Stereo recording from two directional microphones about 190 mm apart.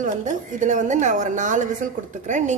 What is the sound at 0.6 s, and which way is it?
A woman's voice, 40° right (ahead or behind).